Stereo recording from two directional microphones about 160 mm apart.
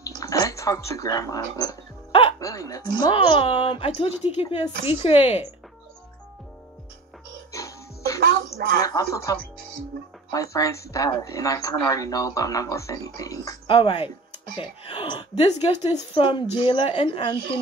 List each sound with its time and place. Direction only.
0.0 s speech: 20° left (ahead or behind)
3.2 s speech: 35° left (ahead or behind)
7.5 s music: 20° left (ahead or behind)
8.8 s speech: 20° left (ahead or behind)
13.7 s speech: 35° left (ahead or behind)